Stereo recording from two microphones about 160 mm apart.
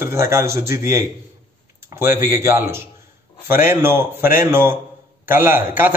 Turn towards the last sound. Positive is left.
turn(degrees=-15)  # may be behind; listen again after turning